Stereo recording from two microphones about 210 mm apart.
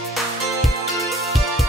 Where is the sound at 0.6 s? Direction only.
Centre (ahead or behind).